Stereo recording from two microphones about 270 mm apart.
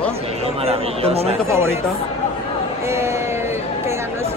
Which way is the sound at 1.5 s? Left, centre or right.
Centre.